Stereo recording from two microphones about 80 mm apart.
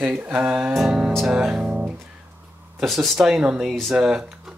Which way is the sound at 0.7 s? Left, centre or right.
Centre.